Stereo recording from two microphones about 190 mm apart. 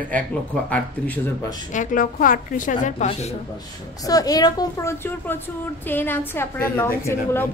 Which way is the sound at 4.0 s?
20° left (ahead or behind).